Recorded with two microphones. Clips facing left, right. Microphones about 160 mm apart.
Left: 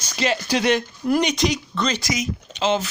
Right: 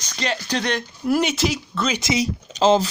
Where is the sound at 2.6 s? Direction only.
35° right (ahead or behind).